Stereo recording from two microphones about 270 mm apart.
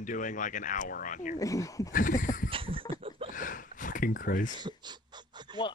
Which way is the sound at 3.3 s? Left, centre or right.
Left.